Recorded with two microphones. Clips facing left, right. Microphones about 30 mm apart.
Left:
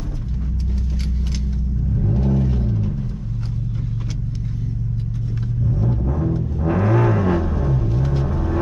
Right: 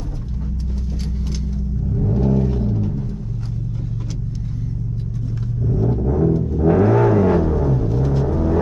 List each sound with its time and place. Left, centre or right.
2.1 s vehicle: centre
5.8 s vehicle: centre
6.3 s music: left
7.7 s vehicle: centre